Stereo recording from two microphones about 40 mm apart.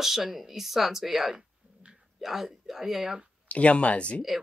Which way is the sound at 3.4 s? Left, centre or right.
Left.